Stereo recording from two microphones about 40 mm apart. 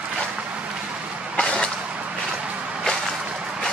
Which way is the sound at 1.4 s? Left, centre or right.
Centre.